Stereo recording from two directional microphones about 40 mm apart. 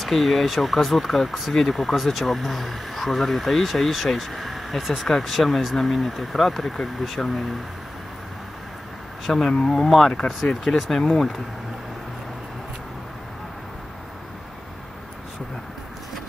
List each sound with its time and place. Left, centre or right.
0.0 s speech: centre
9.2 s speech: centre
9.8 s speech: centre